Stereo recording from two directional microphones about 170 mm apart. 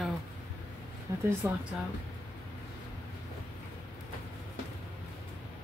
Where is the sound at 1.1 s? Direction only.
20° right (ahead or behind).